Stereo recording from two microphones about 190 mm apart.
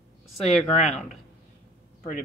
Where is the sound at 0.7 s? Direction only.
35° left (ahead or behind).